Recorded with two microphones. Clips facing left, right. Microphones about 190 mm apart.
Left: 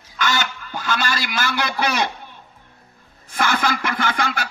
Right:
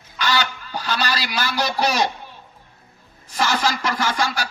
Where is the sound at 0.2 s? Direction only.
50° left (ahead or behind).